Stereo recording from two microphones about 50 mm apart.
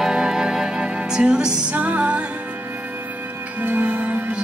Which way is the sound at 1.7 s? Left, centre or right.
Right.